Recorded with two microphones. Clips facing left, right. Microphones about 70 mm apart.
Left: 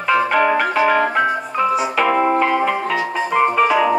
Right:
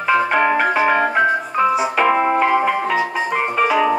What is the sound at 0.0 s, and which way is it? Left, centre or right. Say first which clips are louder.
Music: even; centre.